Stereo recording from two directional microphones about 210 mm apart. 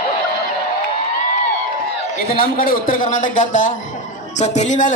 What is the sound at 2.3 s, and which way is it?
Speech, 40° left (ahead or behind).